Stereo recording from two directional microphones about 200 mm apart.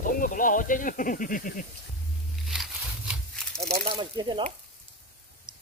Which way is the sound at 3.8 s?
25° right (ahead or behind).